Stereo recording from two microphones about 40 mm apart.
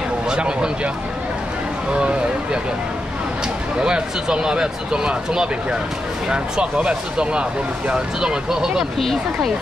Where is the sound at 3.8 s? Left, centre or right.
Right.